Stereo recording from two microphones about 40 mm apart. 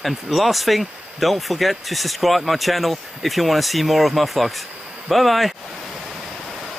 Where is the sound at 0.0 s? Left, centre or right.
Centre.